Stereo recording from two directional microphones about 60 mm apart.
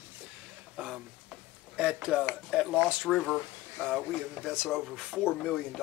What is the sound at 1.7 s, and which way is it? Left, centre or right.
Speech, centre.